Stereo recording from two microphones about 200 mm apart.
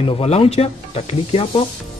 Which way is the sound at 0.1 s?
30° left (ahead or behind).